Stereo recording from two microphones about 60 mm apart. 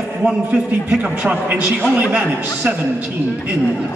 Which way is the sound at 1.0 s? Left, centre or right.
Centre.